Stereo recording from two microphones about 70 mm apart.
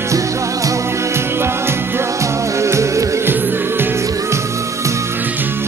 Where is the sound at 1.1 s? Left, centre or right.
Right.